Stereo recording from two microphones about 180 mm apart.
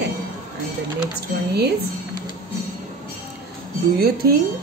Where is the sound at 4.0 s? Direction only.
60° right (ahead or behind).